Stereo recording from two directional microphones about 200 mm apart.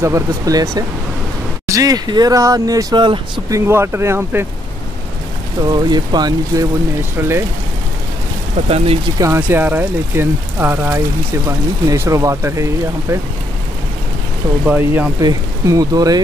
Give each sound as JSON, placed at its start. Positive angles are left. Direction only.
{"t": 0.0, "sound": "speech", "side_deg": -15}
{"t": 5.7, "sound": "speech", "side_deg": -20}
{"t": 8.6, "sound": "speech", "side_deg": -30}
{"t": 9.2, "sound": "speech", "side_deg": -10}
{"t": 14.7, "sound": "speech", "side_deg": -10}